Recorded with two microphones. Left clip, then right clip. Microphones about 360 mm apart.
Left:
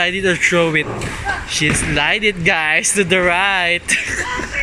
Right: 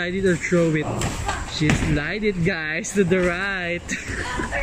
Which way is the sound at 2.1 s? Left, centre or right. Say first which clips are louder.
Left 8 dB; left.